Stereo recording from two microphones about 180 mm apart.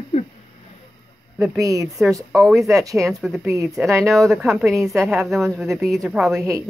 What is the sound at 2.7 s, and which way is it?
Speech, 20° right (ahead or behind).